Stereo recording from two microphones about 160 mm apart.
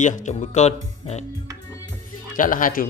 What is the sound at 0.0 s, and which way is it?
Speech, 50° left (ahead or behind).